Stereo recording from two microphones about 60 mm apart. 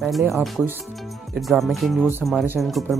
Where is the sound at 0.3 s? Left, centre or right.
Centre.